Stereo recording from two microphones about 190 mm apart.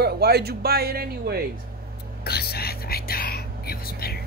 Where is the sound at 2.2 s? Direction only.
55° left (ahead or behind).